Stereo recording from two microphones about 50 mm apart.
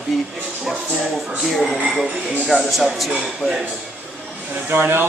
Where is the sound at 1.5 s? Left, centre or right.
Centre.